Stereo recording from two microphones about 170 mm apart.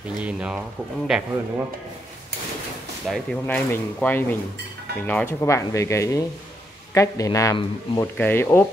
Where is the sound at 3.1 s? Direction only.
Centre (ahead or behind).